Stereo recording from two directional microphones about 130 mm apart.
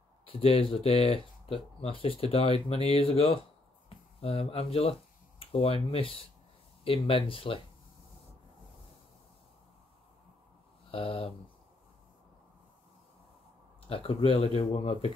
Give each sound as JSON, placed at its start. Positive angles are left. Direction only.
{"t": 0.2, "sound": "speech", "side_deg": 45}
{"t": 10.9, "sound": "speech", "side_deg": 45}
{"t": 13.8, "sound": "speech", "side_deg": 45}